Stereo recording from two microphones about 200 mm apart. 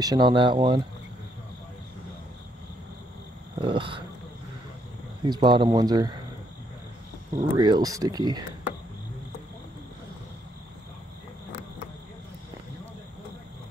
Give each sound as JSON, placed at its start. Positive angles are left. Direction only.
{"t": 0.0, "sound": "speech", "side_deg": -20}
{"t": 3.5, "sound": "speech", "side_deg": -25}
{"t": 5.2, "sound": "speech", "side_deg": -25}
{"t": 7.3, "sound": "speech", "side_deg": -20}